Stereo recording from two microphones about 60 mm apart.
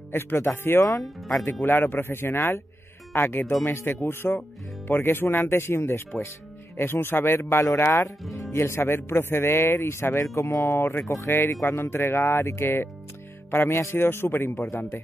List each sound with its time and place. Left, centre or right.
0.1 s a man's voice: left
10.3 s speech: left
10.8 s a man's voice: left
13.7 s a man's voice: left